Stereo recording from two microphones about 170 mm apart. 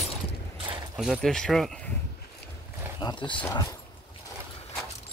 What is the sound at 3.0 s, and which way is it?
Speech, 30° left (ahead or behind).